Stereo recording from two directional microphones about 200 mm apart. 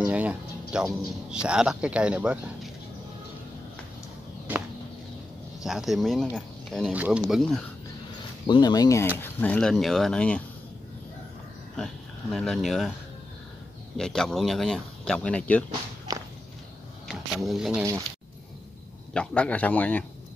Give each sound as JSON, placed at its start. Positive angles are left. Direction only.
{"t": 0.0, "sound": "speech", "side_deg": -5}
{"t": 5.6, "sound": "speech", "side_deg": 0}
{"t": 8.5, "sound": "speech", "side_deg": 20}
{"t": 11.7, "sound": "speech", "side_deg": 0}
{"t": 13.9, "sound": "speech", "side_deg": 5}
{"t": 16.1, "sound": "biting", "side_deg": -20}
{"t": 17.1, "sound": "speech", "side_deg": 0}
{"t": 19.1, "sound": "a man's voice", "side_deg": 5}